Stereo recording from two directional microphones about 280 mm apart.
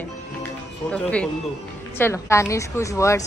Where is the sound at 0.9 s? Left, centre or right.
Centre.